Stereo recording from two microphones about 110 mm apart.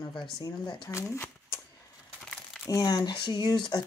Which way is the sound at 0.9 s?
25° left (ahead or behind).